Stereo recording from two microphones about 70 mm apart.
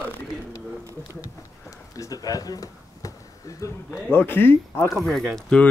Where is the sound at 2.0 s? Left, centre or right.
Left.